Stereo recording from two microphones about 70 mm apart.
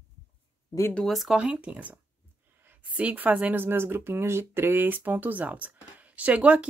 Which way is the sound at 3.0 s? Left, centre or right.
Right.